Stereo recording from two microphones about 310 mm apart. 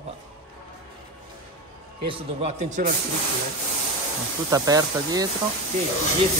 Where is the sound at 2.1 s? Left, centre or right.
Centre.